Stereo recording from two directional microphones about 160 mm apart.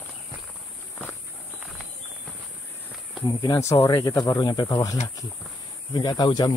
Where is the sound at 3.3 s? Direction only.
25° left (ahead or behind).